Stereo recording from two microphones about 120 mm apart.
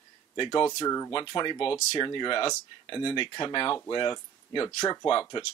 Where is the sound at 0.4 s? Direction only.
35° left (ahead or behind).